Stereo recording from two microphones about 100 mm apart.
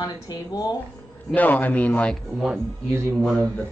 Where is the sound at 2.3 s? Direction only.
Centre (ahead or behind).